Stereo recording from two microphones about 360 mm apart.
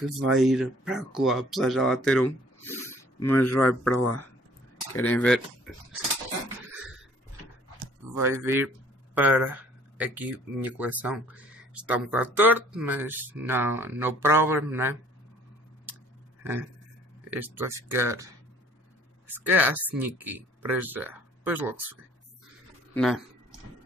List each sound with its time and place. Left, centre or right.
0.3 s speech: centre
3.6 s speech: left
4.9 s speech: centre
8.2 s speech: centre
17.3 s speech: centre
22.9 s a sound: centre